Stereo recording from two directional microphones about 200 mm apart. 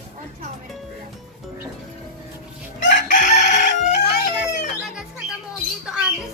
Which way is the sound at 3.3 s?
55° left (ahead or behind).